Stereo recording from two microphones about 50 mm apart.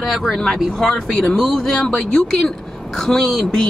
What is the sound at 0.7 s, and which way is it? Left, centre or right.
Speech, centre.